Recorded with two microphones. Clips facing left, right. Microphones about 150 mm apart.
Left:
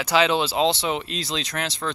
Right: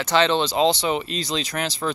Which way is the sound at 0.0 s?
5° left (ahead or behind).